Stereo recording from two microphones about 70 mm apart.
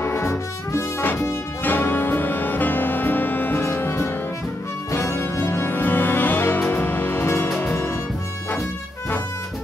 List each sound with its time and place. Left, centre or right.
0.0 s music: left